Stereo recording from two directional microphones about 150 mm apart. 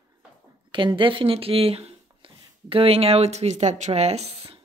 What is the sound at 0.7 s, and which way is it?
Speech, 35° right (ahead or behind).